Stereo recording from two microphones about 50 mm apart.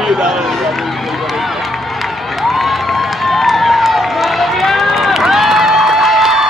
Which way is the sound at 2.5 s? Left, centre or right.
Centre.